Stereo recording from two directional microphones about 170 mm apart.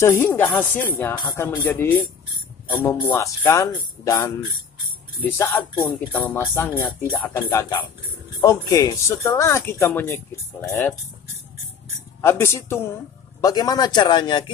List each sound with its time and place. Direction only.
0.0 s speech: 15° left (ahead or behind)
8.4 s speech: 20° left (ahead or behind)
12.2 s a man's voice: 15° left (ahead or behind)